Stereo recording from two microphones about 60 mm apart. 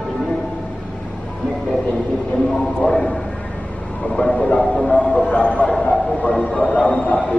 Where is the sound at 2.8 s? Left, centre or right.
Centre.